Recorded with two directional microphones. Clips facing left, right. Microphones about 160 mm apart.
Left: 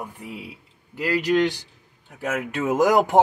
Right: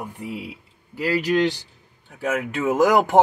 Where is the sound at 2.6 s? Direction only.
15° left (ahead or behind).